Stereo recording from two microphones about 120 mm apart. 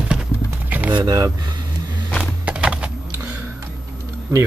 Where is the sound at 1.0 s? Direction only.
30° right (ahead or behind).